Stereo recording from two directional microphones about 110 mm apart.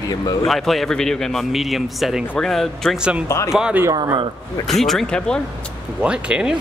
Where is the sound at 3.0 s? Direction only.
10° right (ahead or behind).